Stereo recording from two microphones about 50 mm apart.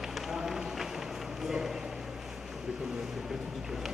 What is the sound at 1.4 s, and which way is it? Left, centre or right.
Speech, centre.